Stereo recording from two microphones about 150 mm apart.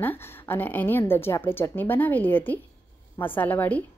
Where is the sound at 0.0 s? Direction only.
15° left (ahead or behind).